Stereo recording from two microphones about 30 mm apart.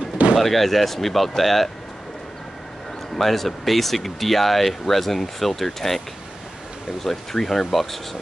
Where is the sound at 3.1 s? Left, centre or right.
Centre.